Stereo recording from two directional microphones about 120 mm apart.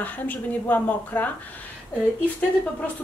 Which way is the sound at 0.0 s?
15° left (ahead or behind).